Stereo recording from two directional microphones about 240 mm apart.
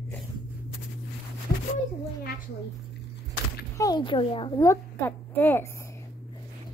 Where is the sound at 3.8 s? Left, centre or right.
Centre.